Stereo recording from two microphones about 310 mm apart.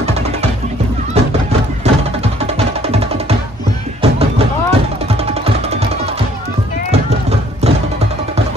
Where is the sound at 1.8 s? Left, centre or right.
Right.